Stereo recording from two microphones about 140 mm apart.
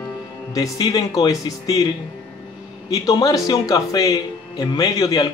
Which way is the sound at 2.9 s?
25° left (ahead or behind).